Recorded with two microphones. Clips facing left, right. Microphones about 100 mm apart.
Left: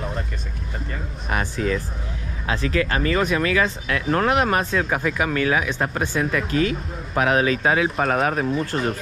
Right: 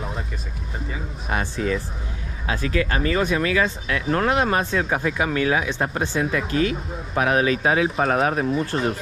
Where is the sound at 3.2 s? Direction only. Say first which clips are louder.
Left 1 dB; 30° right (ahead or behind).